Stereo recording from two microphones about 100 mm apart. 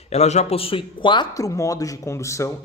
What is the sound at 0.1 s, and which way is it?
A man's voice, 90° left.